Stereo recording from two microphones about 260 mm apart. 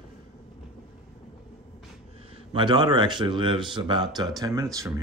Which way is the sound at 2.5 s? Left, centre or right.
Centre.